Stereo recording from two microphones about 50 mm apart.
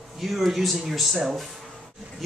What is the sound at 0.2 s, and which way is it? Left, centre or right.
Speech, centre.